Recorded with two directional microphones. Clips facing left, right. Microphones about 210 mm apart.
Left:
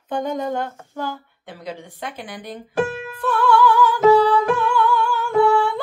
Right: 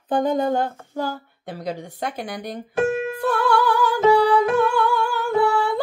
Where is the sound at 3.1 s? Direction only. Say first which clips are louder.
Left 5 dB; 40° right (ahead or behind).